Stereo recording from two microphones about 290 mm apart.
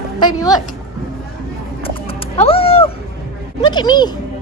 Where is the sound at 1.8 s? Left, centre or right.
Centre.